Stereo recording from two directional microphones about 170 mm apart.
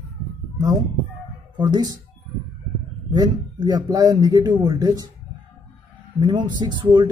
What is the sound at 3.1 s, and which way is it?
Speech, 20° right (ahead or behind).